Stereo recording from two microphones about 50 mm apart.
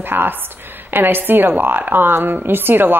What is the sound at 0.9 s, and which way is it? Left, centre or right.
Speech, right.